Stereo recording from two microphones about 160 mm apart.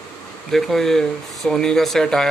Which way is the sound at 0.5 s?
Centre (ahead or behind).